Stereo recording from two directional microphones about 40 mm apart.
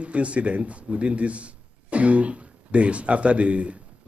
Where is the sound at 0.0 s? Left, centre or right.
Right.